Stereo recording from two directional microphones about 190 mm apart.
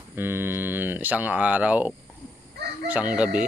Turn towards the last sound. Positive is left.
turn(degrees=-5)  # may be behind; listen again after turning